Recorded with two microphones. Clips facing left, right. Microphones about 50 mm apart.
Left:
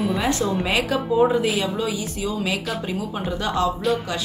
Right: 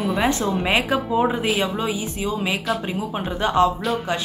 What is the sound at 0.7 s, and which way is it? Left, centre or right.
Speech, right.